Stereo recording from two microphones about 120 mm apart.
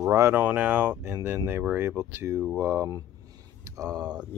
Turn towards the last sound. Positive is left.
turn(degrees=-35)  # may be behind; listen again after turning